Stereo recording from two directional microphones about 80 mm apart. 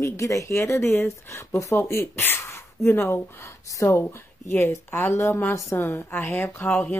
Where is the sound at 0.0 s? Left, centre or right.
Left.